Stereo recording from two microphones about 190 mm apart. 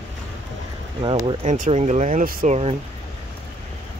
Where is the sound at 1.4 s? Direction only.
40° right (ahead or behind).